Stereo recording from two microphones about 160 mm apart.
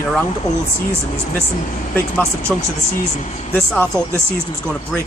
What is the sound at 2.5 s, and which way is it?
Speech, 5° left (ahead or behind).